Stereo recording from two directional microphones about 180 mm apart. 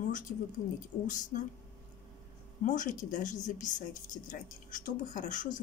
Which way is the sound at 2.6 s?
45° left (ahead or behind).